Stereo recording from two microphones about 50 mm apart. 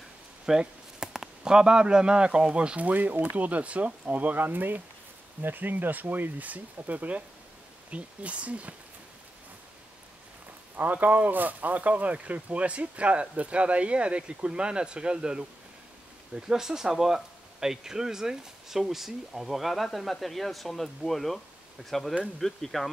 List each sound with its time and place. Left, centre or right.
0.5 s speech: centre; by 8.7 s right
10.8 s speech: right; by 21.4 s centre
22.4 s speech: centre